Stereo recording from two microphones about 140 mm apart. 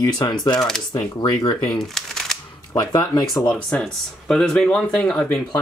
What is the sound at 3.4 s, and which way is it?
Speech, 10° left (ahead or behind).